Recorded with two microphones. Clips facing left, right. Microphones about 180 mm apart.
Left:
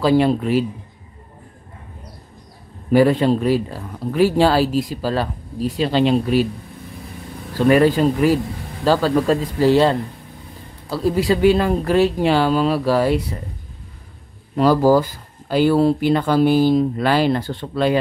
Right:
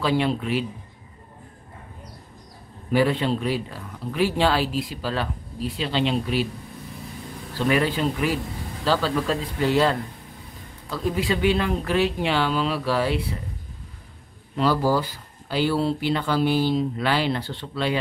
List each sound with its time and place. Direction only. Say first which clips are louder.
0.0 s speech: left 7 dB; 40° left (ahead or behind)
2.9 s speech: left 7 dB; 45° left (ahead or behind)
7.5 s speech: left 8 dB; 45° left (ahead or behind)
14.5 s speech: left 7 dB; 45° left (ahead or behind)